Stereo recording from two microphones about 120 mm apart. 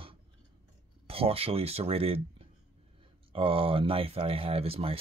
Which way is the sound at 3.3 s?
50° right (ahead or behind).